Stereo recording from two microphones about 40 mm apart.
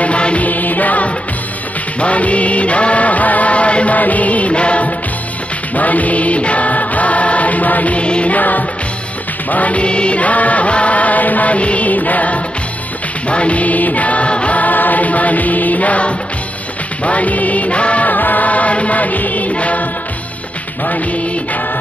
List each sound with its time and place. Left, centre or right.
0.0 s music: left
0.5 s music: left
8.4 s music: left
18.1 s music: left